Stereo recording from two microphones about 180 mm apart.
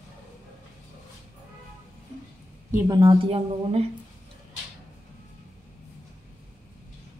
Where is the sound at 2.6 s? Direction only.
15° right (ahead or behind); by 3.9 s 35° right (ahead or behind).